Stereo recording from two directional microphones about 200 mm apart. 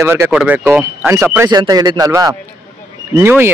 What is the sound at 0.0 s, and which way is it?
Speech, 10° right (ahead or behind).